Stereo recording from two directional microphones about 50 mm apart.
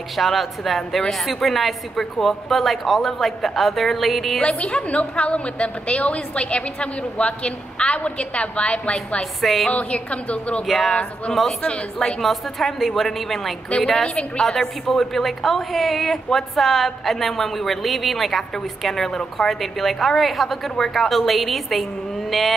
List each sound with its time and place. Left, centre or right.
0.1 s a woman's voice: centre
4.4 s a woman's voice: left
9.2 s a woman's voice: centre
9.7 s a woman's voice: left
12.2 s a woman's voice: centre
14.0 s a woman's voice: centre
14.4 s a woman's voice: centre